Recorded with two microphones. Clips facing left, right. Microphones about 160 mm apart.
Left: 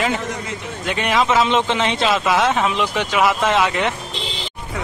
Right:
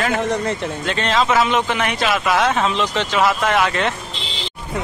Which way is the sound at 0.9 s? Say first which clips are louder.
Left 1 dB; 15° left (ahead or behind).